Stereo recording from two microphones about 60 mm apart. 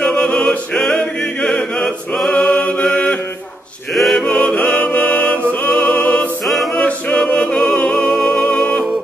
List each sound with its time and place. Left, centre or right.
0.0 s music: centre
2.3 s mantra: left
3.9 s music: centre
4.3 s music: left
6.4 s a capella: centre
6.7 s music: centre